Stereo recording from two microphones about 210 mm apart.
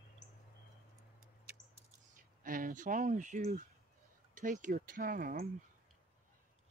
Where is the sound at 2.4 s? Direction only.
40° right (ahead or behind).